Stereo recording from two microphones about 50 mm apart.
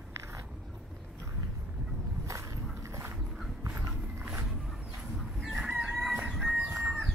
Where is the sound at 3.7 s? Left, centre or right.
Right.